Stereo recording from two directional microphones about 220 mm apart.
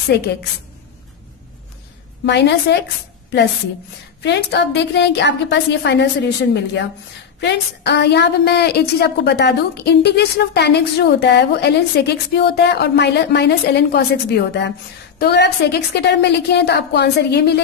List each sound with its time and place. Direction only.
0.1 s a woman's voice: 50° left (ahead or behind)
2.2 s a woman's voice: 50° left (ahead or behind)
4.2 s a woman's voice: 50° left (ahead or behind)